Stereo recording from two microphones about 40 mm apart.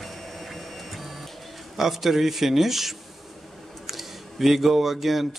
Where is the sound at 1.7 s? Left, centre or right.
Centre.